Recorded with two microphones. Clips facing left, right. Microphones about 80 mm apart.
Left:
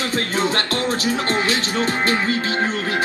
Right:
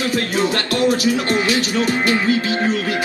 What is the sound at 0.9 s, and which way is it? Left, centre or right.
Speech, left.